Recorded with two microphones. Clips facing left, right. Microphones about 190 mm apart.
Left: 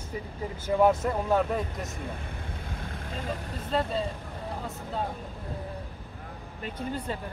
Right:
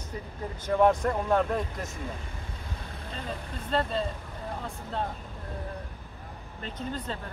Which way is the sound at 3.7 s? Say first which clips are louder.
Even; 5° left (ahead or behind).